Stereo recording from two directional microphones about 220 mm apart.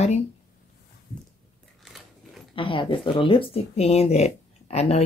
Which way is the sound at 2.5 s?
20° left (ahead or behind).